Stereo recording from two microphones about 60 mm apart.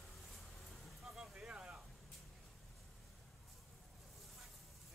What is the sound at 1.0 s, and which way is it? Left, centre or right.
Vehicle, centre.